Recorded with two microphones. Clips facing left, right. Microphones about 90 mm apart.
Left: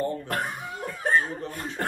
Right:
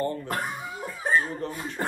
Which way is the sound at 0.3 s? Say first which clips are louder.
Left 1 dB; 10° right (ahead or behind).